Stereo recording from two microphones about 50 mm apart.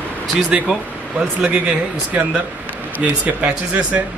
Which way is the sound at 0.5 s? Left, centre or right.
Centre.